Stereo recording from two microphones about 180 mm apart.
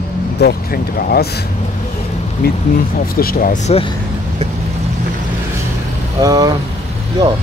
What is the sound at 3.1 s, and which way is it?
Speech, 55° left (ahead or behind).